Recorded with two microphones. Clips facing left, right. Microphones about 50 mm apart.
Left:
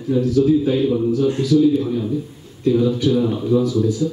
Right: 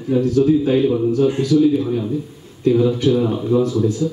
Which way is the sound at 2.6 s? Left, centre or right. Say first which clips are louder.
Right 1 dB; right.